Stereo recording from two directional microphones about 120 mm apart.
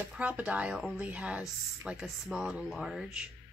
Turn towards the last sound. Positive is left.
turn(degrees=-5)  # may be behind; listen again after turning